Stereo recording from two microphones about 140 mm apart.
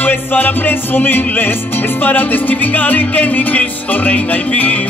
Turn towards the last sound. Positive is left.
turn(degrees=10)  # may be behind; listen again after turning